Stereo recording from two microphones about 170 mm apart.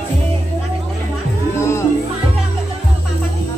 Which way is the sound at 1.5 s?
15° left (ahead or behind).